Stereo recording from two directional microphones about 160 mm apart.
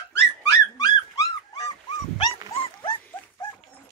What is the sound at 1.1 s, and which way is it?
Dog, 25° left (ahead or behind).